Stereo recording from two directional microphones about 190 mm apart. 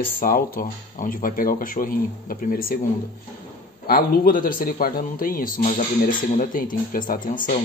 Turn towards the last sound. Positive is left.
turn(degrees=45)  # may be behind; listen again after turning